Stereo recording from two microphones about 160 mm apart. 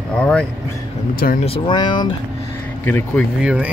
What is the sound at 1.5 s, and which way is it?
Speech, 30° left (ahead or behind).